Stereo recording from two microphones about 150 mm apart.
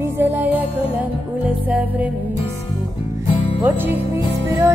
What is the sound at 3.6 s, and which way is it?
Music, 15° right (ahead or behind).